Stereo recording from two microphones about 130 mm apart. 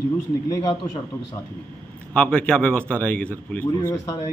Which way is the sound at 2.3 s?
10° left (ahead or behind).